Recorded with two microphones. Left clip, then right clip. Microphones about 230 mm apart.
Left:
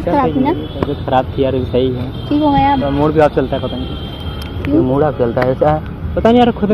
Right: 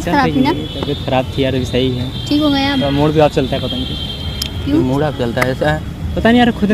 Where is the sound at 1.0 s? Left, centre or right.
Right.